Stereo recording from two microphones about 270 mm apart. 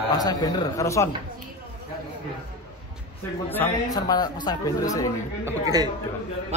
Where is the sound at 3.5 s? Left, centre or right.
Centre.